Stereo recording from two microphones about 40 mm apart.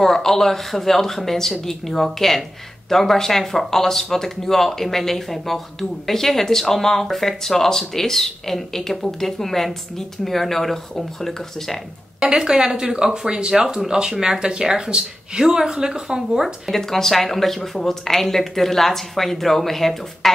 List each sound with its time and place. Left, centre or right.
0.0 s speech: centre
12.4 s speech: centre
16.7 s speech: centre